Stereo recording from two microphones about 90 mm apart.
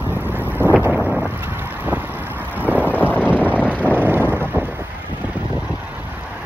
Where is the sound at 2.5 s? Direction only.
20° right (ahead or behind).